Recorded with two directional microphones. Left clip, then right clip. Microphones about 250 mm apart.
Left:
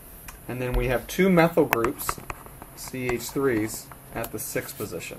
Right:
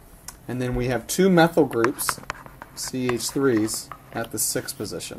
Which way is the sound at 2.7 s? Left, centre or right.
Right.